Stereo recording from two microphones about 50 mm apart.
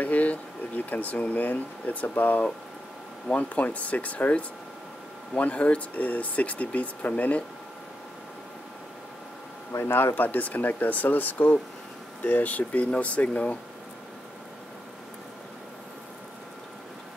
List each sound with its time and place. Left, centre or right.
0.0 s speech: left
9.7 s speech: left